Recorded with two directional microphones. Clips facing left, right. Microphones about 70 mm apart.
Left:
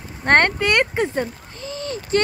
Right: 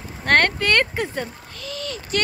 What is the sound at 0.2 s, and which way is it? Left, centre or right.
Speech, left.